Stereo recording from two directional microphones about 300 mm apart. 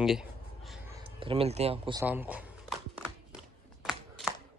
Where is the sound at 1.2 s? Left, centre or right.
Centre.